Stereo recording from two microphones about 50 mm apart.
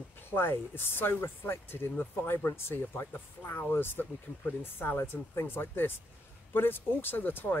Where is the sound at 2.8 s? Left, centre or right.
Left.